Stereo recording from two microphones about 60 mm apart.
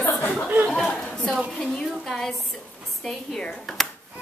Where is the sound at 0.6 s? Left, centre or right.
Centre.